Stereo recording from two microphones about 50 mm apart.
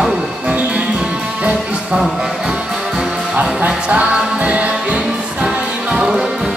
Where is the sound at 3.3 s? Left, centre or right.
Right.